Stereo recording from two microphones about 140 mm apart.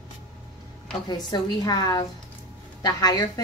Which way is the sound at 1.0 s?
30° left (ahead or behind).